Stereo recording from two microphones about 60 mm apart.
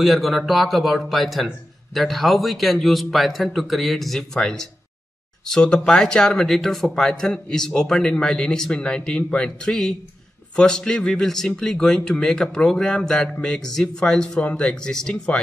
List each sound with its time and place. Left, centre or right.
0.0 s a man's voice: centre